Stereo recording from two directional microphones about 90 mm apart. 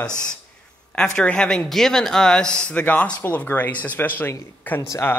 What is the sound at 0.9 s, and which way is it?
A man's voice, 10° left (ahead or behind).